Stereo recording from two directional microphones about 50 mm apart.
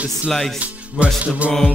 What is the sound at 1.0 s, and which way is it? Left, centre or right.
Music, right.